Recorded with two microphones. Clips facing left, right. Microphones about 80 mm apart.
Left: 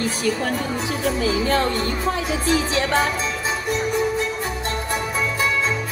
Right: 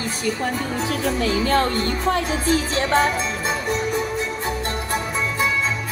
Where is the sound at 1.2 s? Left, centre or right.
Right.